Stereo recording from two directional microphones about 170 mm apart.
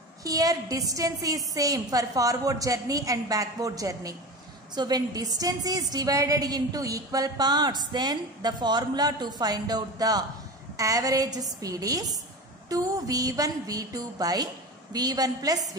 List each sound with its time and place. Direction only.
0.2 s a woman's voice: 20° right (ahead or behind)